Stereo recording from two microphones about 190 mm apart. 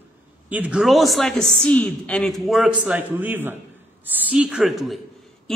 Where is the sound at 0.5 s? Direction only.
5° right (ahead or behind).